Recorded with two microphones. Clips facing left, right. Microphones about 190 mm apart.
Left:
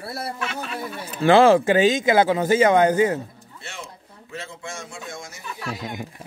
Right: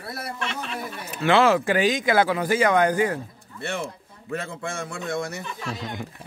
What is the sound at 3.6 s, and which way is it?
A man's voice, 60° right (ahead or behind).